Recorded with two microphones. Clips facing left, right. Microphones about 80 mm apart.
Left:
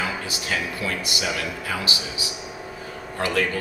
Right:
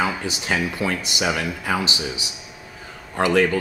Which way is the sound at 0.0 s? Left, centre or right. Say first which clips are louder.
Right 4 dB; right.